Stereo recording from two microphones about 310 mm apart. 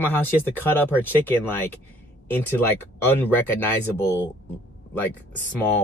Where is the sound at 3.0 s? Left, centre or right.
Centre.